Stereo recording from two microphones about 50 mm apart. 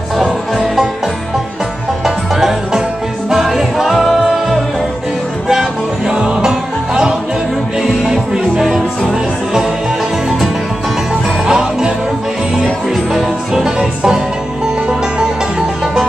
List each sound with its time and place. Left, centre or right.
2.0 s music: centre
11.4 s music: centre
13.1 s music: centre